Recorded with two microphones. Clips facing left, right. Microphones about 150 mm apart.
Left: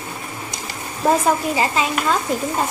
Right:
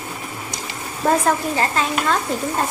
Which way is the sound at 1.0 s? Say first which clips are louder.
Left 1 dB; 5° left (ahead or behind).